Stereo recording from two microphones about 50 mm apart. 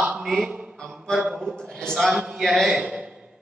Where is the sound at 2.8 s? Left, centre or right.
Right.